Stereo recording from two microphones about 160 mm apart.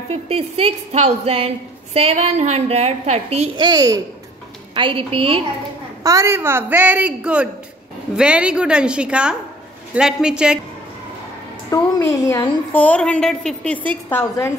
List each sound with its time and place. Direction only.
0.1 s a woman's voice: 40° right (ahead or behind)
3.5 s a child's voice: 25° right (ahead or behind)
6.0 s a woman's voice: 15° right (ahead or behind)
11.7 s a woman's voice: 20° left (ahead or behind)
12.8 s a woman's voice: 10° left (ahead or behind)